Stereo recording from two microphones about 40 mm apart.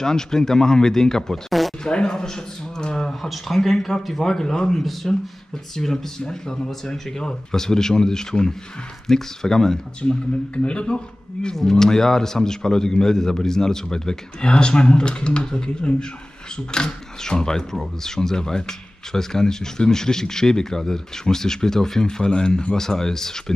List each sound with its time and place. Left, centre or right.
0.0 s speech: centre
3.2 s speech: centre
10.5 s speech: left
11.5 s speech: centre